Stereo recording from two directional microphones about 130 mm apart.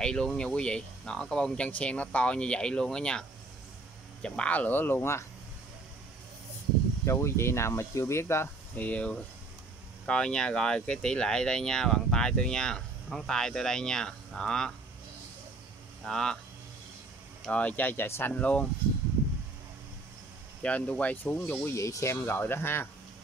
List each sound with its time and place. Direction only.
0.0 s speech: 5° left (ahead or behind)
7.1 s speech: 20° left (ahead or behind)
16.0 s speech: 5° left (ahead or behind)
17.5 s speech: 10° left (ahead or behind)
20.6 s speech: 10° left (ahead or behind)